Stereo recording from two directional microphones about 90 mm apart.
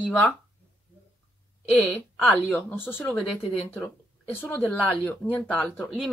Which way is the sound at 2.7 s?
20° left (ahead or behind).